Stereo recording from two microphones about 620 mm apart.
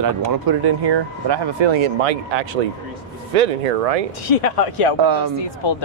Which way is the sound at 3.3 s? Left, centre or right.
Right.